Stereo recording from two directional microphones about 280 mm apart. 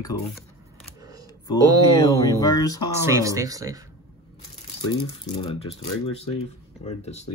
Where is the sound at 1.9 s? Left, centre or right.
Centre.